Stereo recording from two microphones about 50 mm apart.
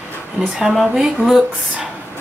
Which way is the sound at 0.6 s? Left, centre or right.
Centre.